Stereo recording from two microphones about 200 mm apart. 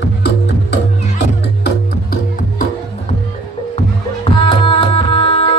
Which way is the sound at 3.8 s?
25° left (ahead or behind).